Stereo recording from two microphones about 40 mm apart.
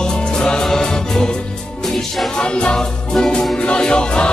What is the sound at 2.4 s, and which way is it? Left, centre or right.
Music, left.